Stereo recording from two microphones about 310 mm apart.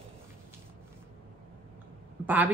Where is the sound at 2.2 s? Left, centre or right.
Centre.